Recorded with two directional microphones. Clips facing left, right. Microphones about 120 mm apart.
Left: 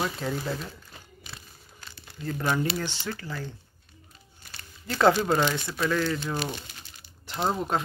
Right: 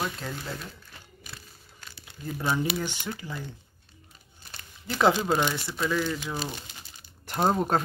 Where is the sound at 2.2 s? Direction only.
15° right (ahead or behind).